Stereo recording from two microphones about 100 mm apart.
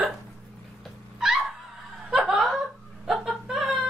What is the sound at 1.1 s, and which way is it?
Dog, 5° right (ahead or behind).